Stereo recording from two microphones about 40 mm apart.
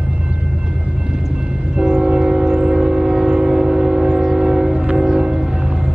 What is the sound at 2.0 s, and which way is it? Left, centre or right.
Train, centre.